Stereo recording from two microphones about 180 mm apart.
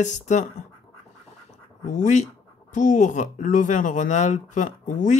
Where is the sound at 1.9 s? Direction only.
45° left (ahead or behind).